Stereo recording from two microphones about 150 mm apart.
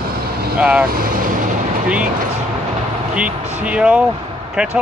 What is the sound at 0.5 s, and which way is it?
Speech, 5° right (ahead or behind).